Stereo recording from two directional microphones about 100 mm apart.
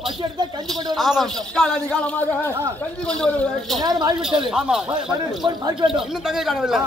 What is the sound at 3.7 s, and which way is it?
Speech, 45° right (ahead or behind).